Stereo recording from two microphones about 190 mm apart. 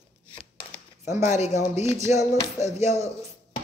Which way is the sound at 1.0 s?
15° right (ahead or behind).